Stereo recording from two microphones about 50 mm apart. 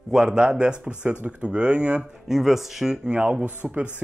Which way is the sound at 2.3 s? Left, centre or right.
Centre.